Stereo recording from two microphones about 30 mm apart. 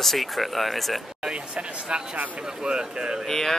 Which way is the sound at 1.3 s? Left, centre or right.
Right.